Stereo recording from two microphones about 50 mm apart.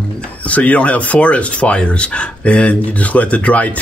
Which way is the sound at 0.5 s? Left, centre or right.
Left.